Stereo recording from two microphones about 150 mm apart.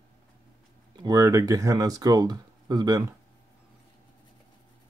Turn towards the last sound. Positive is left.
turn(degrees=-25)  # may be behind; listen again after turning